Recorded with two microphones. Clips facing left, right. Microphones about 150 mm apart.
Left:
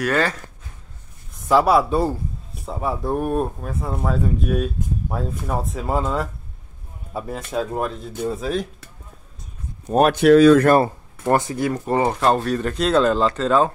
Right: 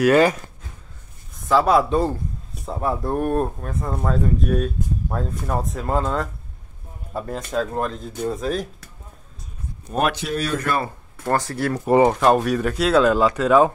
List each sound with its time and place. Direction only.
0.0 s speech: 15° right (ahead or behind)
1.5 s speech: 10° left (ahead or behind)
9.8 s speech: 40° left (ahead or behind)
10.1 s speech: 80° left
11.2 s speech: 20° left (ahead or behind)
11.8 s speech: 15° right (ahead or behind)